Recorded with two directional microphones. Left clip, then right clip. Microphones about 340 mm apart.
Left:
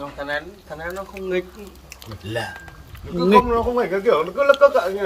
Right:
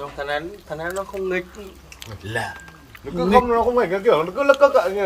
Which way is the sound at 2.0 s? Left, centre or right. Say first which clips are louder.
Right 1 dB; centre.